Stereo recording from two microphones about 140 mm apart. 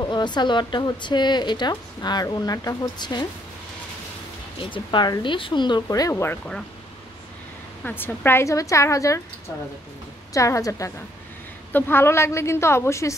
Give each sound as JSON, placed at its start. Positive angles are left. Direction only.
{"t": 0.0, "sound": "speech", "side_deg": 30}
{"t": 4.6, "sound": "speech", "side_deg": 35}
{"t": 7.8, "sound": "a woman's voice", "side_deg": 15}
{"t": 10.3, "sound": "a woman's voice", "side_deg": 25}